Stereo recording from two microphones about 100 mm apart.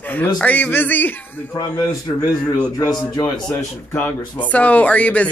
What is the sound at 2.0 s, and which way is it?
A man's voice, 35° left (ahead or behind).